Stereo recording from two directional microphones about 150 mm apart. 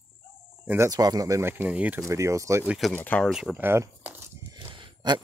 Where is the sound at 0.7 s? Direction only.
20° right (ahead or behind).